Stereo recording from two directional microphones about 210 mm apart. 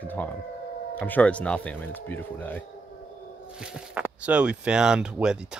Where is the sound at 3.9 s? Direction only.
5° right (ahead or behind).